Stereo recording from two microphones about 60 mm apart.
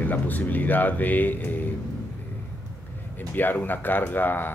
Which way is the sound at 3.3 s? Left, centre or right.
Left.